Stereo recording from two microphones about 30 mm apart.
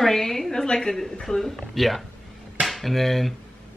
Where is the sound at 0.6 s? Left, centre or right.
Left.